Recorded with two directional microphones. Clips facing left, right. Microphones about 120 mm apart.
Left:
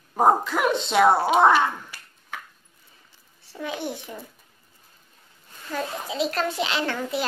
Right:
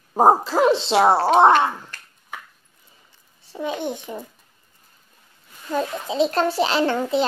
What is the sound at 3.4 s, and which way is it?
Speech, 20° right (ahead or behind).